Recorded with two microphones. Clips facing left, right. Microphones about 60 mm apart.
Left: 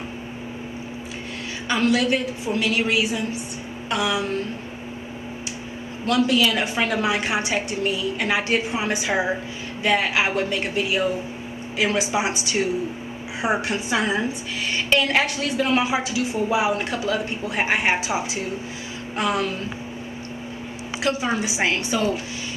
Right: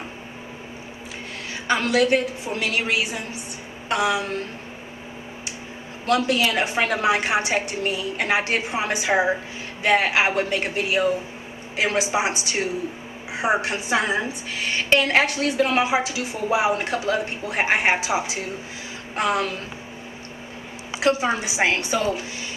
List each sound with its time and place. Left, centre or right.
1.7 s a woman's voice: right
6.0 s a woman's voice: right
12.1 s a woman's voice: right
14.6 s a woman's voice: right
21.0 s a woman's voice: right